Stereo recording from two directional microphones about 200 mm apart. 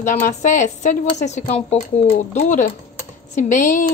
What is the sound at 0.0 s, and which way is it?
Speech, 40° left (ahead or behind).